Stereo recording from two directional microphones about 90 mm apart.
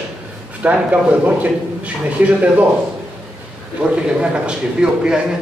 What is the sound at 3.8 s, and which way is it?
Speech, 10° right (ahead or behind).